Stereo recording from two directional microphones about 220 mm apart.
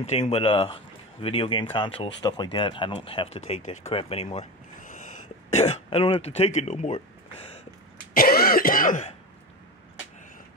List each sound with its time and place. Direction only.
0.0 s speech: 30° left (ahead or behind)
3.9 s a sound: 25° left (ahead or behind)
5.5 s speech: 30° left (ahead or behind)
8.1 s throat clearing: 40° left (ahead or behind)